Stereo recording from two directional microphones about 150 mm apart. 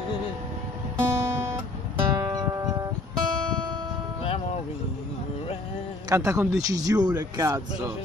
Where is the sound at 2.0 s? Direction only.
25° right (ahead or behind).